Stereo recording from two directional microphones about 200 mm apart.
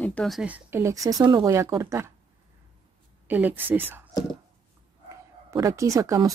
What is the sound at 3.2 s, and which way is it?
Speech, 10° right (ahead or behind).